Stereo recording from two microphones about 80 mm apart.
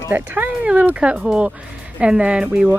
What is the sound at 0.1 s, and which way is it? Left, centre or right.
Speech, right.